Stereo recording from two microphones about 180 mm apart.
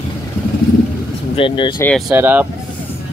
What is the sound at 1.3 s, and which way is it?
Speech, 30° left (ahead or behind).